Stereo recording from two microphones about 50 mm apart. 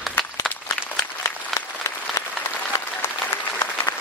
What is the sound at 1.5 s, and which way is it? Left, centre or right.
Applause, left.